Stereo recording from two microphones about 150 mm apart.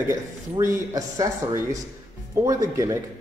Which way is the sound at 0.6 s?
20° right (ahead or behind).